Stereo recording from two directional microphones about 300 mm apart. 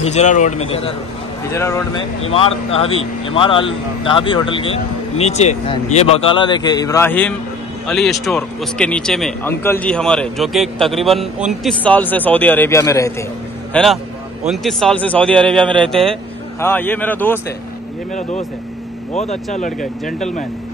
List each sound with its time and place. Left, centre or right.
0.0 s a man's voice: left
1.5 s a man's voice: centre
19.1 s a man's voice: left